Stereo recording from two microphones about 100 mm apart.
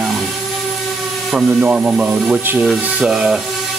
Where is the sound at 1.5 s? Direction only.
15° right (ahead or behind).